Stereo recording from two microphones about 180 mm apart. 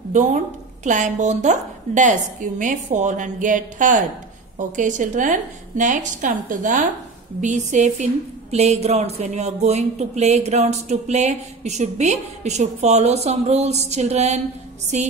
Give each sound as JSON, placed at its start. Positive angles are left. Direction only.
{"t": 0.1, "sound": "a woman's voice", "side_deg": -45}